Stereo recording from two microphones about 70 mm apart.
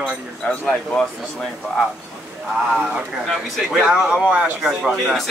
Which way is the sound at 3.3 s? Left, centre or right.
Centre.